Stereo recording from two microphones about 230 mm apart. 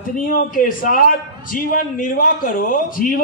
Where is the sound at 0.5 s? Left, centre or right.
Left.